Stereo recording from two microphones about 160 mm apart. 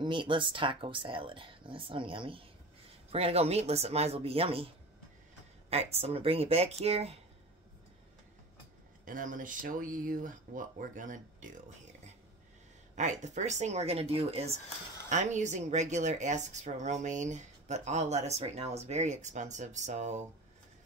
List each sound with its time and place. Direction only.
0.0 s speech: 30° right (ahead or behind)
5.7 s speech: 40° right (ahead or behind)
9.0 s speech: 55° right (ahead or behind)
12.9 s speech: 50° right (ahead or behind)
15.0 s speech: 50° right (ahead or behind)